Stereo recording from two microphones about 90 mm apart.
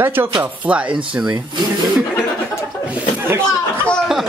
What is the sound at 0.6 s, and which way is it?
Speech, 15° right (ahead or behind).